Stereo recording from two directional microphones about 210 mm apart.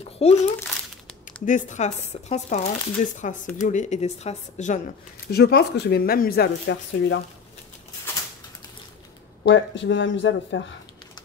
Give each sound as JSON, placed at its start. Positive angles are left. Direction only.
{"t": 0.2, "sound": "speech", "side_deg": 30}
{"t": 5.3, "sound": "speech", "side_deg": 50}
{"t": 9.4, "sound": "speech", "side_deg": 55}